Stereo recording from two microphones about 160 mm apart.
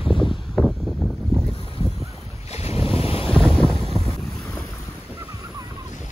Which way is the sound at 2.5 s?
40° left (ahead or behind).